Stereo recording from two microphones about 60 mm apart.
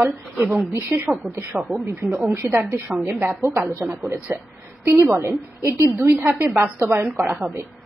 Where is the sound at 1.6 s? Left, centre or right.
Right.